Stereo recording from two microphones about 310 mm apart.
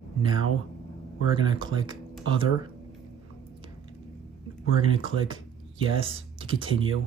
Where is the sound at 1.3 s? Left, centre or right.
Centre.